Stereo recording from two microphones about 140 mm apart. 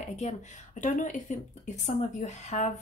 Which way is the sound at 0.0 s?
55° left (ahead or behind).